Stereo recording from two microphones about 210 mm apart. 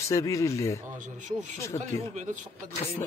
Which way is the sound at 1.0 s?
35° right (ahead or behind).